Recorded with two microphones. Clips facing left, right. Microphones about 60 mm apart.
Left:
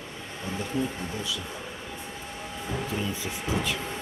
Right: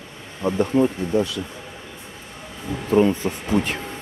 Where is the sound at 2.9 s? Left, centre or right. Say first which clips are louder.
Right 13 dB; right.